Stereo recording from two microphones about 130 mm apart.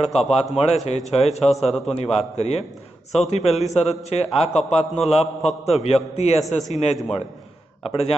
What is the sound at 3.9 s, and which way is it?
A man's voice, 55° left (ahead or behind).